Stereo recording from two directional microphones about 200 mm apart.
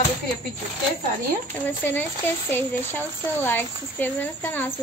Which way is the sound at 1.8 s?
10° left (ahead or behind).